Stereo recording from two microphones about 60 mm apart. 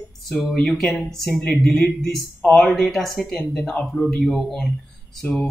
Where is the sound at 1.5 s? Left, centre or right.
Centre.